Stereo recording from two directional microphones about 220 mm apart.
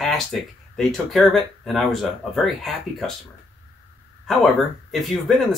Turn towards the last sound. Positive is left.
turn(degrees=0)  # may be behind; listen again after turning